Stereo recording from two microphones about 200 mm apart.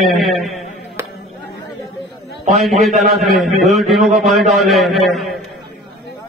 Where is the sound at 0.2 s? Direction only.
Centre (ahead or behind).